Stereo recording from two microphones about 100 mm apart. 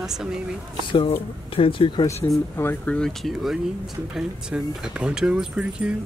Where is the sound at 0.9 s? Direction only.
70° left (ahead or behind).